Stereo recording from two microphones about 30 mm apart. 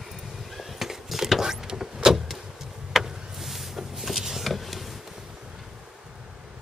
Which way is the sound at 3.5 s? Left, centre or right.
Centre.